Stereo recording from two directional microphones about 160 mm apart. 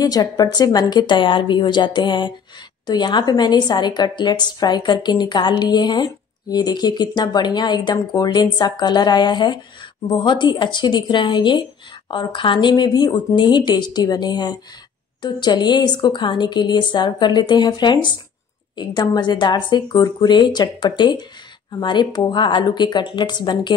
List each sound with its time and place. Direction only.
0.0 s a woman's voice: 25° left (ahead or behind)